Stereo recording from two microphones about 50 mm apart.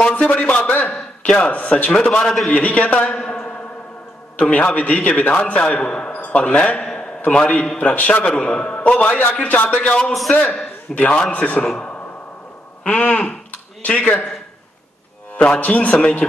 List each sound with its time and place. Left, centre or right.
0.3 s a man's voice: left
2.2 s a man's voice: centre
2.5 s a man's voice: left
9.8 s a man's voice: centre
12.8 s a man's voice: left
15.3 s a man's voice: left
16.0 s a man's voice: centre